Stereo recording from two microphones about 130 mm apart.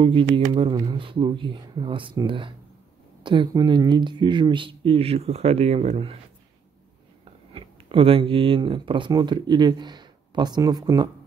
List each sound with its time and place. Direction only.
0.0 s speech: 40° right (ahead or behind)
7.5 s speech: 45° right (ahead or behind)